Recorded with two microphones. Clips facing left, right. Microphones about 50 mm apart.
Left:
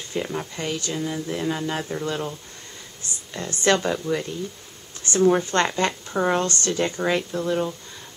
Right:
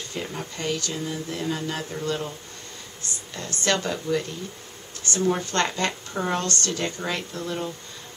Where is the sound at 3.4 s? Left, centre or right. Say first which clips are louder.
Left 4 dB; left.